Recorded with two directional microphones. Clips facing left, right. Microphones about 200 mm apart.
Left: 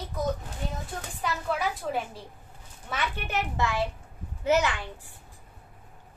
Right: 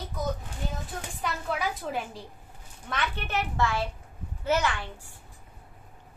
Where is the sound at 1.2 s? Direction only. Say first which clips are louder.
Left 2 dB; centre (ahead or behind).